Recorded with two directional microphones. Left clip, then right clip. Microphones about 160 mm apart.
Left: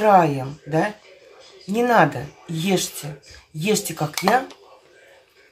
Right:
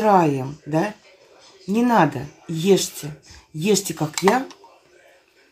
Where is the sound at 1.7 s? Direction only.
25° left (ahead or behind).